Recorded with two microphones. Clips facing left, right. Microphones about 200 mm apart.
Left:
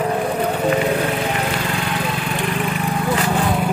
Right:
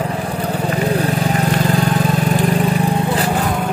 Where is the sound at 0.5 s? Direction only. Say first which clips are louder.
Right 2 dB; 35° right (ahead or behind).